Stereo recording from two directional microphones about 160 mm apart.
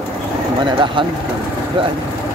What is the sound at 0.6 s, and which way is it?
Speech, 30° right (ahead or behind).